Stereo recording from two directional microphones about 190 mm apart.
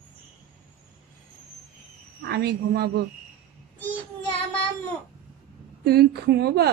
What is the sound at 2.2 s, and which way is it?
Speech, 60° right (ahead or behind).